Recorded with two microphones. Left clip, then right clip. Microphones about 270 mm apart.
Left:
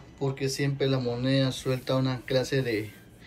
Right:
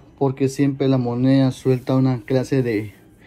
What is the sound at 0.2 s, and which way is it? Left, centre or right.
Speech, centre.